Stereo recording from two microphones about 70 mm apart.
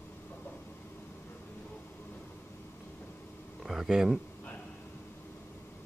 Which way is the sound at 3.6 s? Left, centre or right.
Centre.